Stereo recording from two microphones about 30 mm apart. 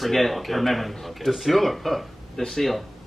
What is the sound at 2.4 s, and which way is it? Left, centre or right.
Speech, centre.